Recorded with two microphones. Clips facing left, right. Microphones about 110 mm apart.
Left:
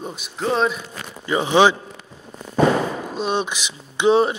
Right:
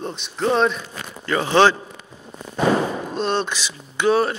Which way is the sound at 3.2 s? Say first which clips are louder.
Right 1 dB; 10° left (ahead or behind).